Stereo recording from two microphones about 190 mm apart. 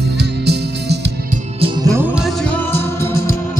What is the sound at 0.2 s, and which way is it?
Music, 60° right (ahead or behind).